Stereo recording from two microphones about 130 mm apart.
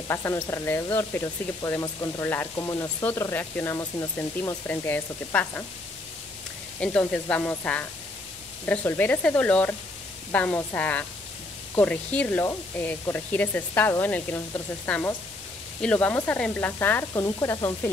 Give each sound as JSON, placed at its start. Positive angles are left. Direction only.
{"t": 0.1, "sound": "speech", "side_deg": 20}
{"t": 6.8, "sound": "speech", "side_deg": 10}